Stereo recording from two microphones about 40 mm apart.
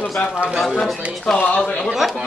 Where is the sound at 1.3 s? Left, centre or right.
Left.